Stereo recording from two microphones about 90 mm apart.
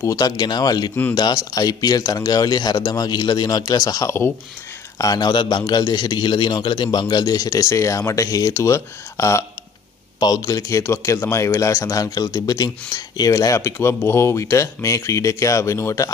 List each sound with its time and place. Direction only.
0.0 s speech: 40° left (ahead or behind)
0.4 s a man's voice: 50° left (ahead or behind)
13.6 s speech: 30° left (ahead or behind)